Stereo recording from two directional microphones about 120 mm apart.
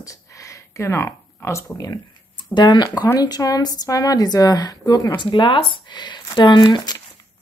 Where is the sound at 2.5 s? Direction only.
40° left (ahead or behind).